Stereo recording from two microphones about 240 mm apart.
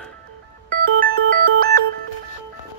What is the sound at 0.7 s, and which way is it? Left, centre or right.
Ringtone, right.